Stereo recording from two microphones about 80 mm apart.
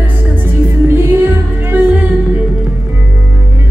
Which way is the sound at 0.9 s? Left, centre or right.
Right.